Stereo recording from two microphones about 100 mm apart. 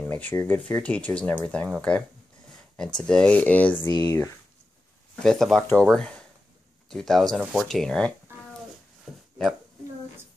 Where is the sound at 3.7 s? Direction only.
45° left (ahead or behind).